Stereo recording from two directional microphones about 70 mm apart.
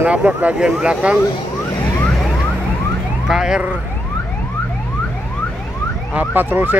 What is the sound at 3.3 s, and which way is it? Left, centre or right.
Police car, centre.